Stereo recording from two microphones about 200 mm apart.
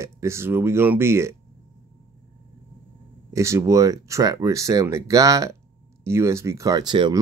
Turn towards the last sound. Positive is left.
turn(degrees=-20)  # may be behind; listen again after turning